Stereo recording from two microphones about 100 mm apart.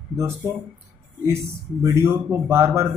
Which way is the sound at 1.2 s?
30° right (ahead or behind).